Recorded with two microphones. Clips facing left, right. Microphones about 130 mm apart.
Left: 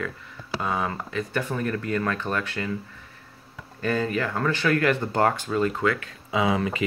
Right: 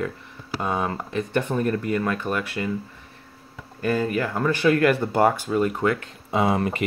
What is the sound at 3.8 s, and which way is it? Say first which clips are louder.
Speech: right 2 dB; 10° right (ahead or behind).